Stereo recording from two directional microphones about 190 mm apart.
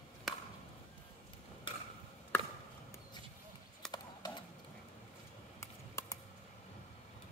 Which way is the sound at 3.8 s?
Centre (ahead or behind).